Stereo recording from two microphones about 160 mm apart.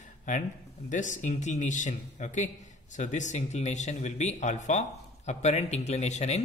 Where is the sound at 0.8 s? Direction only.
50° left (ahead or behind).